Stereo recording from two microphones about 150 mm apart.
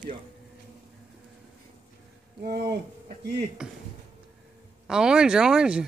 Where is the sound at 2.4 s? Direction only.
90° right.